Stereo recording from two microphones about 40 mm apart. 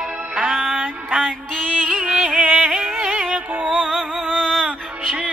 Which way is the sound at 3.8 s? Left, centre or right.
Centre.